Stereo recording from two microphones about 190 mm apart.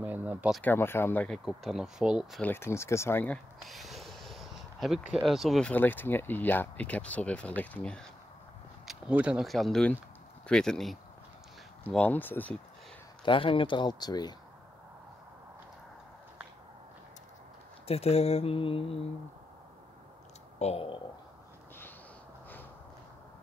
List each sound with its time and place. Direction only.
0.0 s speech: 10° right (ahead or behind)
0.6 s speech: 10° left (ahead or behind)
2.4 s speech: 10° left (ahead or behind)
3.6 s a sound: centre (ahead or behind)
5.1 s speech: centre (ahead or behind)
8.8 s speech: 5° right (ahead or behind)
13.2 s speech: 30° left (ahead or behind)
17.8 s speech: 30° left (ahead or behind)
20.5 s speech: 35° left (ahead or behind)